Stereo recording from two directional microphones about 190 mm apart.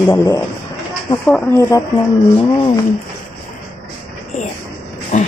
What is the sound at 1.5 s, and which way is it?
Speech, 15° left (ahead or behind).